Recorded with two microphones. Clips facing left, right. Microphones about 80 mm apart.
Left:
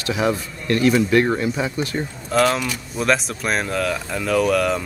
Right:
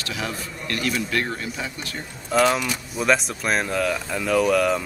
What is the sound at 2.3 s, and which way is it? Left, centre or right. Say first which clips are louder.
Speech: left 1 dB; centre.